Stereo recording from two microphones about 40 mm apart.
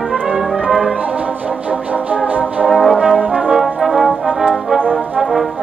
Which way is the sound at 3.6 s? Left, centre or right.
Centre.